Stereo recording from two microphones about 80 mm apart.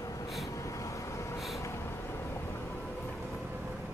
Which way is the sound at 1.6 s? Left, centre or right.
Left.